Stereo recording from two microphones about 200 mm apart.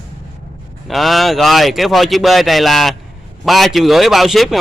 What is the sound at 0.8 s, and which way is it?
Speech, centre (ahead or behind).